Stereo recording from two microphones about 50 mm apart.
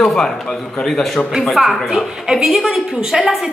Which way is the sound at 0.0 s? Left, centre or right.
Centre.